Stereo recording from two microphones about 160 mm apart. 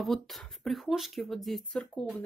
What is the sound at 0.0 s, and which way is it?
Speech, centre (ahead or behind).